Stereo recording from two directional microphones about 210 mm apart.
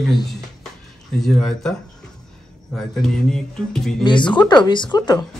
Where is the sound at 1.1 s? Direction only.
Centre (ahead or behind).